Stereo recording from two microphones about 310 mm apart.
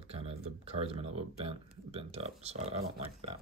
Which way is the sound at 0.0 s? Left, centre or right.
Centre.